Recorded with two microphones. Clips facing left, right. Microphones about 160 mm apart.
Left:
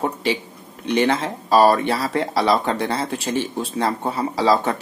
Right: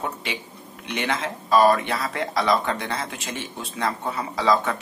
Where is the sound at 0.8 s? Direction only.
35° left (ahead or behind).